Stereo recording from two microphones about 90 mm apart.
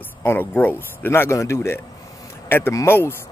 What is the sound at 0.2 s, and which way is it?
Speech, 20° left (ahead or behind).